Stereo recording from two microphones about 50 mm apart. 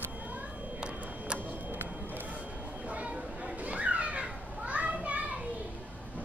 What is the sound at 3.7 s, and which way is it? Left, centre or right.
Children playing, right.